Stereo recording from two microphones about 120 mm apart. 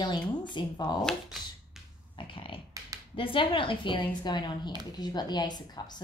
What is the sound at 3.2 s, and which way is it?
A woman's voice, 45° left (ahead or behind).